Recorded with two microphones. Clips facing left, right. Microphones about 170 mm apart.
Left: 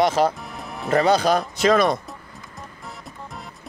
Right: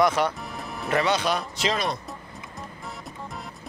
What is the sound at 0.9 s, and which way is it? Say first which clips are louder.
Speech: left 6 dB; 40° left (ahead or behind).